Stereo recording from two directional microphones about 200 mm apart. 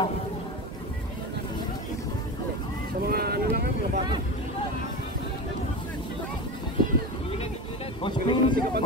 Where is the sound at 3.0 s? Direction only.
50° right (ahead or behind).